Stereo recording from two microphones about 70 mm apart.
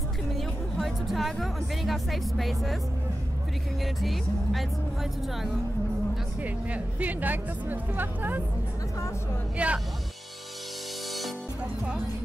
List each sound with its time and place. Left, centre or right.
0.4 s speech: centre
3.8 s speech: centre
6.4 s speech: right
9.6 s speech: centre